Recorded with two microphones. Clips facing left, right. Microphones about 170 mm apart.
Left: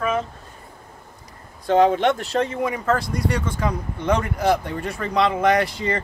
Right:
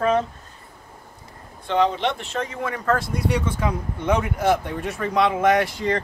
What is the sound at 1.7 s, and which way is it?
Speech, 50° left (ahead or behind).